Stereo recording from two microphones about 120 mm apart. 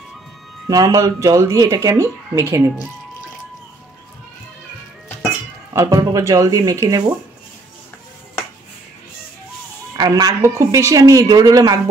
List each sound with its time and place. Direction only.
0.7 s speech: 30° right (ahead or behind)
5.7 s speech: 30° right (ahead or behind)
9.9 s speech: 30° right (ahead or behind)